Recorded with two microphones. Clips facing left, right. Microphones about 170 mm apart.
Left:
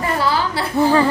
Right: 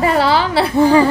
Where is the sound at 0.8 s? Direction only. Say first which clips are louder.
Right 3 dB; 15° right (ahead or behind).